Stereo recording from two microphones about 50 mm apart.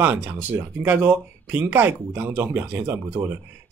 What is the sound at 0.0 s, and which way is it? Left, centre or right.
Speech, right.